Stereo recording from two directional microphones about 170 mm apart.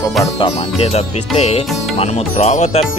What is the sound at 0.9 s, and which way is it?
Speech, 40° left (ahead or behind).